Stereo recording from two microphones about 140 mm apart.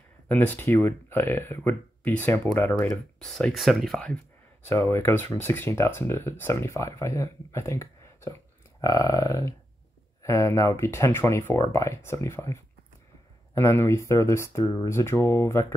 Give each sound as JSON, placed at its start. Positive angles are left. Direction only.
{"t": 0.3, "sound": "speech", "side_deg": 10}
{"t": 3.2, "sound": "speech", "side_deg": 5}
{"t": 4.6, "sound": "speech", "side_deg": 20}